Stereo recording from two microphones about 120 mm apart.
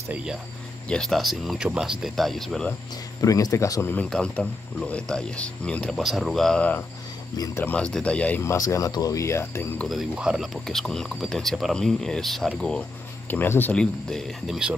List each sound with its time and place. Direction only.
0.1 s speech: 5° right (ahead or behind)
0.8 s speech: 5° left (ahead or behind)
3.2 s speech: 30° left (ahead or behind)
3.9 s speech: 10° left (ahead or behind)
7.3 s speech: 30° left (ahead or behind)
7.6 s speech: 10° left (ahead or behind)
8.5 s speech: 25° left (ahead or behind)
9.8 s speech: 5° right (ahead or behind)
13.3 s speech: 15° left (ahead or behind); by 14.8 s 5° right (ahead or behind)